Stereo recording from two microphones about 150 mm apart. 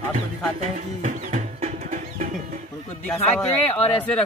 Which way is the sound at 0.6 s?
50° right (ahead or behind).